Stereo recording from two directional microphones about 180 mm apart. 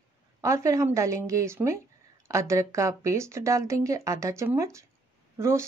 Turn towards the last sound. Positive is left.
turn(degrees=-15)  # may be behind; listen again after turning